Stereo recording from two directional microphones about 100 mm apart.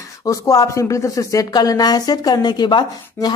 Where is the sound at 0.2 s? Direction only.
35° left (ahead or behind).